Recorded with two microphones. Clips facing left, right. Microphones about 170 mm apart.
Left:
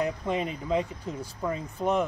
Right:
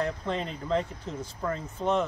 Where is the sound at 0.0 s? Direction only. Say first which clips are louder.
Left 2 dB; 10° left (ahead or behind).